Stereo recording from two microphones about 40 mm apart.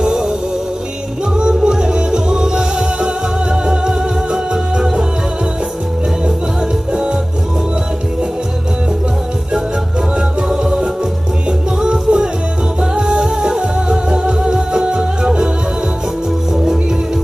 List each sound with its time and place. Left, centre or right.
0.0 s music: centre
1.4 s music: centre
10.5 s music: centre